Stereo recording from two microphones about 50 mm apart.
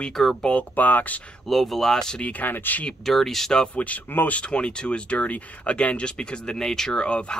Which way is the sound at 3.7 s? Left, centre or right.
Left.